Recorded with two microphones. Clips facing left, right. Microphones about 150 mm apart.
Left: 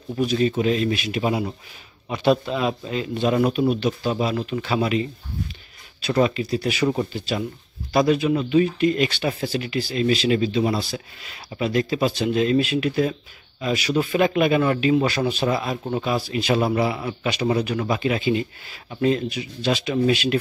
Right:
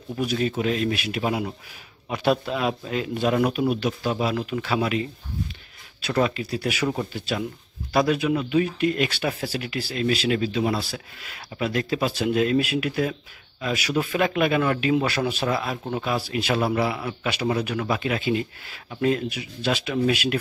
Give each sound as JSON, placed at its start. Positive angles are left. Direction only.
{"t": 0.2, "sound": "speech", "side_deg": -5}
{"t": 6.1, "sound": "speech", "side_deg": 0}